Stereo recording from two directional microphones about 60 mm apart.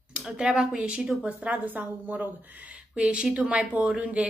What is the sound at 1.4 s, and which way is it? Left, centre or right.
Speech, right.